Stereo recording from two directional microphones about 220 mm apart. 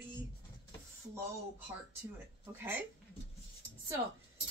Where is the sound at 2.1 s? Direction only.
10° right (ahead or behind).